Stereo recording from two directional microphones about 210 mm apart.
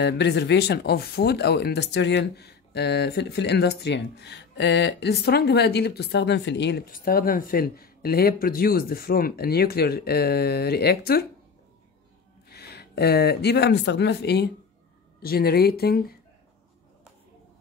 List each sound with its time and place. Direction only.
0.0 s speech: 55° left (ahead or behind)
12.4 s speech: 50° left (ahead or behind)